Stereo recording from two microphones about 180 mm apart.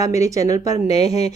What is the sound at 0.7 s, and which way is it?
Speech, 35° left (ahead or behind).